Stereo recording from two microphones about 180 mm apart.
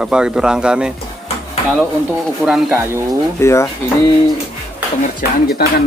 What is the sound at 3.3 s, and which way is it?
Speech, 15° left (ahead or behind).